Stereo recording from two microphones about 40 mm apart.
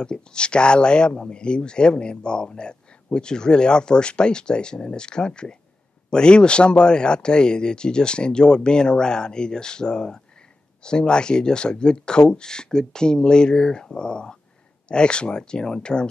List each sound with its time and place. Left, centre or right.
0.0 s speech: left